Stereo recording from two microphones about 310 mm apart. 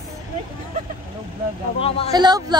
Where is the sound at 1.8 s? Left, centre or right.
Centre.